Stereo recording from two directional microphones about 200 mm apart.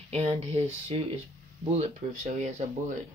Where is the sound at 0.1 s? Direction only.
30° right (ahead or behind).